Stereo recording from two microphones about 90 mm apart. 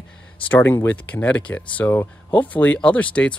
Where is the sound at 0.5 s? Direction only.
25° left (ahead or behind).